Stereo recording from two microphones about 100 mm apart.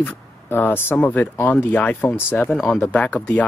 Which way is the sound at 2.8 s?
15° left (ahead or behind).